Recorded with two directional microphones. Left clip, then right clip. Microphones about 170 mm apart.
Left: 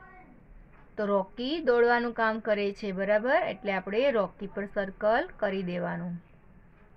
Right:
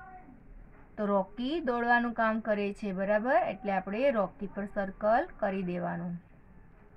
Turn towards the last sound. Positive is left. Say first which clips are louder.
# left 2 dB
turn(degrees=40)  # may be behind; listen again after turning